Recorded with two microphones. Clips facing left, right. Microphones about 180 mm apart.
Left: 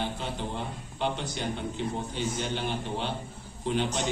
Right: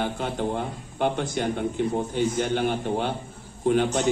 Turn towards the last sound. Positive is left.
turn(degrees=-50)  # may be behind; listen again after turning